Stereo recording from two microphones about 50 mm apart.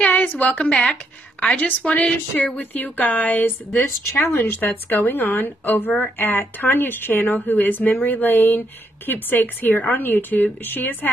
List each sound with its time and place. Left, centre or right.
0.1 s a woman's voice: left
2.6 s speech: left